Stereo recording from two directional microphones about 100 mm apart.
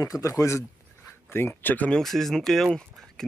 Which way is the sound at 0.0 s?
35° left (ahead or behind).